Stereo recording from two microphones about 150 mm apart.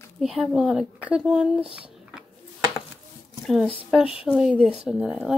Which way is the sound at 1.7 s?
10° right (ahead or behind).